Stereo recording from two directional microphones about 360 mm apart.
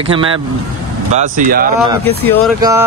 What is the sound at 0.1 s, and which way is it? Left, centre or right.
Speech, centre.